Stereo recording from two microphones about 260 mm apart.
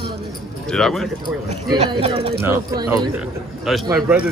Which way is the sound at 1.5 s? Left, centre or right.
Right.